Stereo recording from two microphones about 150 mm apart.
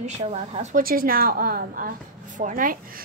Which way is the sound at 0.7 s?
75° right (ahead or behind).